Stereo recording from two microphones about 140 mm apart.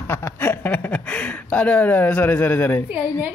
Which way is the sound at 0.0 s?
15° left (ahead or behind).